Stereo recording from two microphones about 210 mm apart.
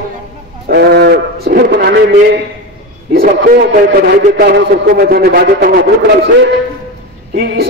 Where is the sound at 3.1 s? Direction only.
45° right (ahead or behind).